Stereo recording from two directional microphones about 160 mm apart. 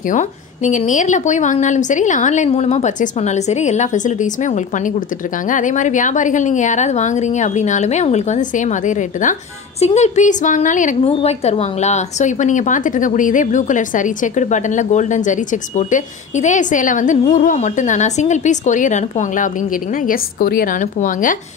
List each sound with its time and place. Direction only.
0.1 s a woman's voice: 50° left (ahead or behind)
11.1 s a woman's voice: 40° left (ahead or behind); by 21.4 s 55° left (ahead or behind)